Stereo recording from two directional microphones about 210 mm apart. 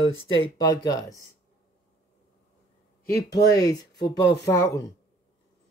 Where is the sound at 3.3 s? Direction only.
15° left (ahead or behind).